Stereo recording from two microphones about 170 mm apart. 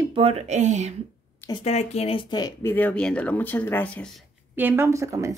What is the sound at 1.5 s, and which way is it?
Speech, 35° left (ahead or behind).